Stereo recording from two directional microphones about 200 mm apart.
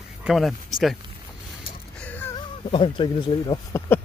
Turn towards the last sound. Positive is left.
turn(degrees=25)  # may be behind; listen again after turning